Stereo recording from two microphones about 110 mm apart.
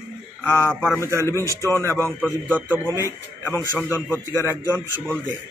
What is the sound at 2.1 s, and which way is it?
Speech, 10° left (ahead or behind).